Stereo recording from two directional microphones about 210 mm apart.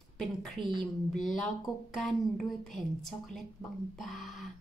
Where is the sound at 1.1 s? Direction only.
Centre (ahead or behind).